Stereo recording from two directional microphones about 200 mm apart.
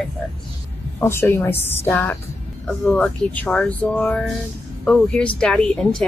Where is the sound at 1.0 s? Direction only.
10° left (ahead or behind).